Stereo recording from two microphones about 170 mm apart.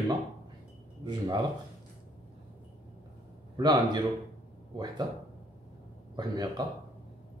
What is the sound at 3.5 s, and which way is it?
A man's voice, 25° right (ahead or behind).